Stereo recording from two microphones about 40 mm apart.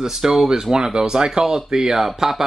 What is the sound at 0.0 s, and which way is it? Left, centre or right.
Speech, centre.